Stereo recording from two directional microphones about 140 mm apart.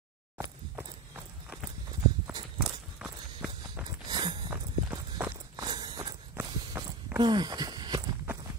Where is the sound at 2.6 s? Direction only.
5° right (ahead or behind).